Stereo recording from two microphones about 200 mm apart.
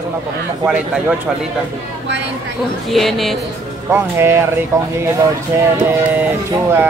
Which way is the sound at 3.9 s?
10° right (ahead or behind).